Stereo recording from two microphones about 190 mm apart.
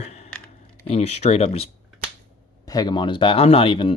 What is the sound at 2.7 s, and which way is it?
Speech, 20° left (ahead or behind).